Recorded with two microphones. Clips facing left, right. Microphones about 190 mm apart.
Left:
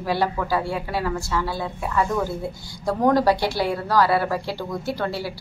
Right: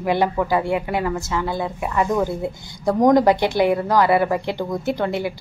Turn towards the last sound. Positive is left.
turn(degrees=-20)  # may be behind; listen again after turning